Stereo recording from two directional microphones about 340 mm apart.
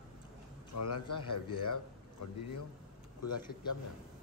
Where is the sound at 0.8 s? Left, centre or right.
Left.